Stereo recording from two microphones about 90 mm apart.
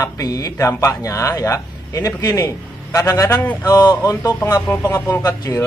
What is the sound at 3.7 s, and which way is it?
Speech, 45° left (ahead or behind).